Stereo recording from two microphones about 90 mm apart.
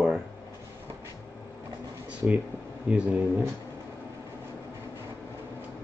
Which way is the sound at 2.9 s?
15° right (ahead or behind).